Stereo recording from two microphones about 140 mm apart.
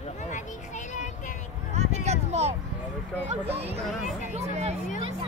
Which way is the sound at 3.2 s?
50° right (ahead or behind).